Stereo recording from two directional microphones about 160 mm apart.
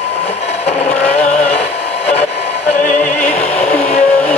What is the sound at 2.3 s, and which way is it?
Music, 90° left.